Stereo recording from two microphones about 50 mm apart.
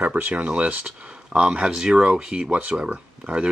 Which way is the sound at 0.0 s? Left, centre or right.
Right.